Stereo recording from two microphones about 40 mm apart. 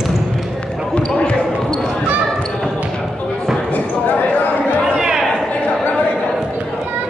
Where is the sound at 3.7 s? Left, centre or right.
Left.